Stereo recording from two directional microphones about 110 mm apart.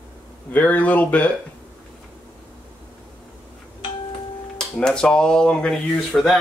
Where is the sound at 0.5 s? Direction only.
15° left (ahead or behind).